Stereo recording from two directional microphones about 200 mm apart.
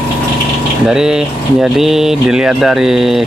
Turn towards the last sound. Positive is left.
turn(degrees=0)  # may be behind; listen again after turning